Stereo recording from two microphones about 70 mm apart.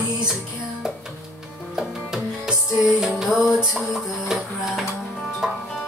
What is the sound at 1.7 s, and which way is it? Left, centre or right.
Music, centre.